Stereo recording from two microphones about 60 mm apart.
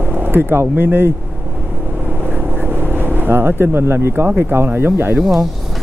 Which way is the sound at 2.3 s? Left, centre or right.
Right.